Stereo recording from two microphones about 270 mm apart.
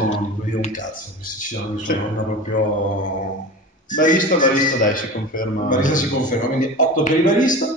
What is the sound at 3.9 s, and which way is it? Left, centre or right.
A man's voice, left.